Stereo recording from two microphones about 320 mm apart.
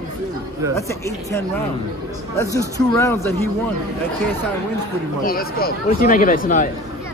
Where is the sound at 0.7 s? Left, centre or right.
Centre.